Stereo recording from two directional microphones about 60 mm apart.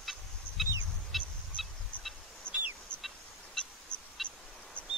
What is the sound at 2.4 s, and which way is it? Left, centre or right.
Fowl, centre.